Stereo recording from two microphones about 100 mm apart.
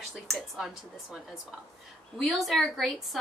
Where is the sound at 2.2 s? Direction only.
Centre (ahead or behind).